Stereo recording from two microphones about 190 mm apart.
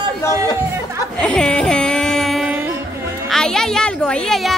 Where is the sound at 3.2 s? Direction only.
5° left (ahead or behind).